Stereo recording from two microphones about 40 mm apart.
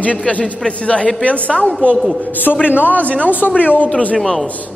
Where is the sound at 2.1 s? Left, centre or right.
Left.